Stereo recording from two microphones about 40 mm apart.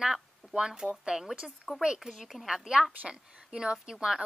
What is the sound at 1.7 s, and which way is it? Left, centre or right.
Speech, left.